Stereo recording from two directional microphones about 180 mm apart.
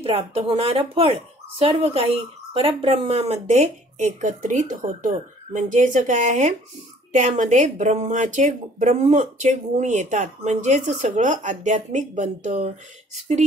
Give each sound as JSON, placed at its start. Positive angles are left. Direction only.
{"t": 0.0, "sound": "speech", "side_deg": -30}